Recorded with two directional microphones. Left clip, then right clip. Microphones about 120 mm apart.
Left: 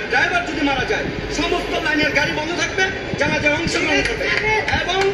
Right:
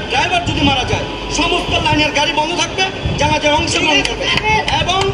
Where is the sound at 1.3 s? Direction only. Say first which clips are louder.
Right 6 dB; 25° left (ahead or behind).